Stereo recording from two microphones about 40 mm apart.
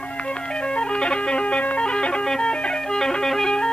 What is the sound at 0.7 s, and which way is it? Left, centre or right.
Music, left.